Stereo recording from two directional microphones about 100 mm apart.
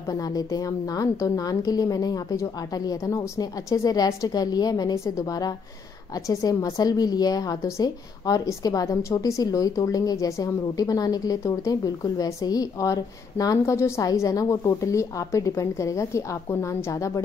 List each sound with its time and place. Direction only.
0.1 s a woman's voice: 40° left (ahead or behind)